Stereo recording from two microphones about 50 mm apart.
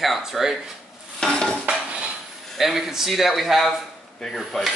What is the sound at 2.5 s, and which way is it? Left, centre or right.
Speech, centre.